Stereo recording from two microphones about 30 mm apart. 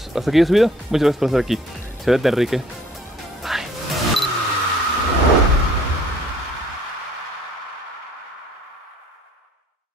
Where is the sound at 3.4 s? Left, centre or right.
Centre.